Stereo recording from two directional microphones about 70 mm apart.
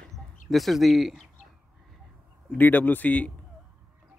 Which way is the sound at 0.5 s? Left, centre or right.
Centre.